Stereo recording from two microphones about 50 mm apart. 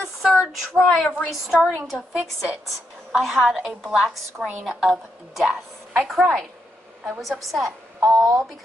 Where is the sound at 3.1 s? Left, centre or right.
Centre.